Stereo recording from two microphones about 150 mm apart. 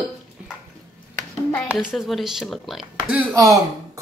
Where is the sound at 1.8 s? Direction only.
5° right (ahead or behind).